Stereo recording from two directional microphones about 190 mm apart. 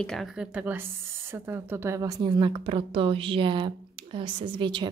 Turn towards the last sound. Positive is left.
turn(degrees=-25)  # may be behind; listen again after turning